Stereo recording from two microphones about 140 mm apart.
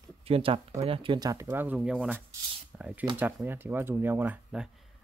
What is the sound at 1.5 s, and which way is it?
Speech, 10° right (ahead or behind).